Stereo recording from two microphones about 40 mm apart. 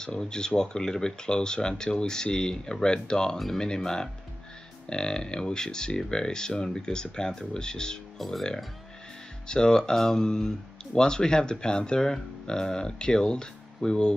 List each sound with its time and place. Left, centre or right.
0.0 s speech: centre
8.2 s speech: centre
9.5 s speech: centre